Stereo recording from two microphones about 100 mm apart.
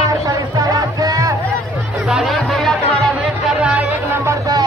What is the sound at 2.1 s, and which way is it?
Music, centre (ahead or behind).